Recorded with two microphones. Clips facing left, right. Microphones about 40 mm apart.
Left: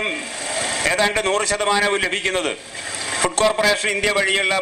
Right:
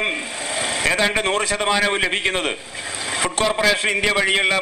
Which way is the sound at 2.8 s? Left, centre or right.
Centre.